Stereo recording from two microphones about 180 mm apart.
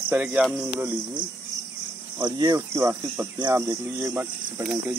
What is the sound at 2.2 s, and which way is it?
Speech, 25° right (ahead or behind).